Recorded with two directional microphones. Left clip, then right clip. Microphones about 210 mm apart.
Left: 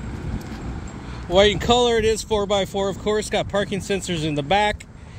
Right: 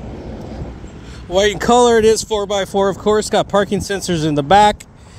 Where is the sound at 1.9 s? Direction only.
35° right (ahead or behind).